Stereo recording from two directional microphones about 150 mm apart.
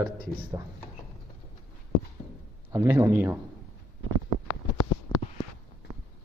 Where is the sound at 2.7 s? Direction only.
20° right (ahead or behind).